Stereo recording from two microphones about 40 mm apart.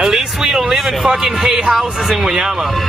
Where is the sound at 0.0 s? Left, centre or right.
Centre.